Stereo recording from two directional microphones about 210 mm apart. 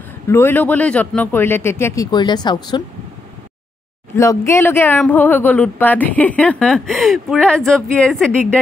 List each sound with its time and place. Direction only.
0.3 s speech: 10° left (ahead or behind)
4.1 s speech: 15° left (ahead or behind)